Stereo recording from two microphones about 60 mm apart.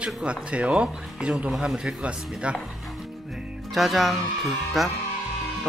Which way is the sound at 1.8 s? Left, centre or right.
Centre.